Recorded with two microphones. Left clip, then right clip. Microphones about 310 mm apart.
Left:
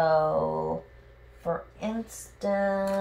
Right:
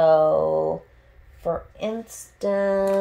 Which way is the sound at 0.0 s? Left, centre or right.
Right.